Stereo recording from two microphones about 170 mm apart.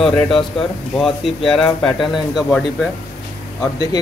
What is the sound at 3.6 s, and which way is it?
Speech, 20° left (ahead or behind).